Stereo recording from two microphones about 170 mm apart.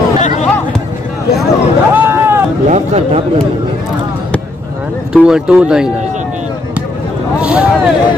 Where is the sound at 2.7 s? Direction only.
40° right (ahead or behind).